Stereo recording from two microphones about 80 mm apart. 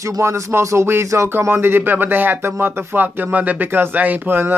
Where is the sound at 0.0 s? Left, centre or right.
Right.